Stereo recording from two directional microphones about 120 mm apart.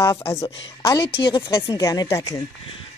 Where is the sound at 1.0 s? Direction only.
45° left (ahead or behind).